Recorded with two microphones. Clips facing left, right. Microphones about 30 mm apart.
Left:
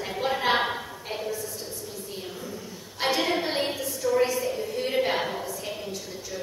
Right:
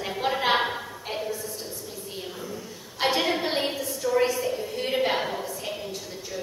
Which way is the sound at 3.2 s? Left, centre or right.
Centre.